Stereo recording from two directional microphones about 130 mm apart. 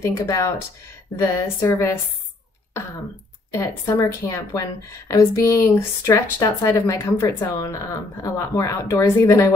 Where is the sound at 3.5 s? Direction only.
20° left (ahead or behind).